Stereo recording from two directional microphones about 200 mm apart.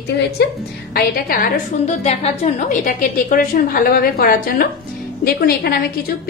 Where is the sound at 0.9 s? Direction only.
50° left (ahead or behind).